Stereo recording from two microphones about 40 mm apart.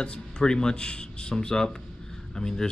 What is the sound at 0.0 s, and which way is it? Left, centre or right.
Speech, left.